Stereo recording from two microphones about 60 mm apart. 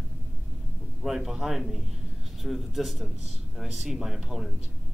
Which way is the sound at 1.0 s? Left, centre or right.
Centre.